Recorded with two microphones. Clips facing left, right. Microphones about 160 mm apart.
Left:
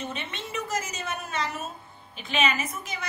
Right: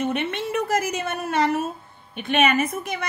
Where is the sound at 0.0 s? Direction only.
65° right (ahead or behind).